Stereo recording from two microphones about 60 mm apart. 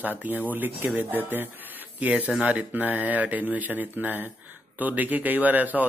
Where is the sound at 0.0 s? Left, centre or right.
Right.